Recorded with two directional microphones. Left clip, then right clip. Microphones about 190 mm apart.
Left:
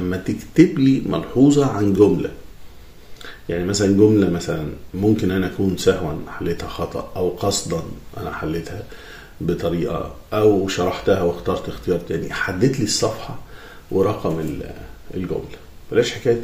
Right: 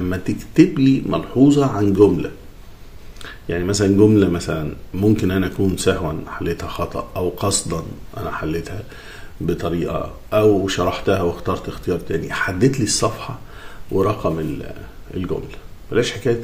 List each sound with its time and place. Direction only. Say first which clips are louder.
0.0 s a man's voice: even; 15° right (ahead or behind)
3.2 s speech: right 1 dB; 20° right (ahead or behind)
15.9 s speech: left 1 dB; 25° right (ahead or behind)